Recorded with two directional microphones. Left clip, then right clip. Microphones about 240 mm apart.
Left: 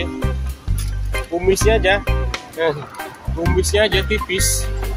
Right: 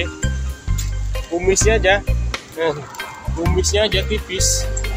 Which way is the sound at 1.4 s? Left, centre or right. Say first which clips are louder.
Even; centre.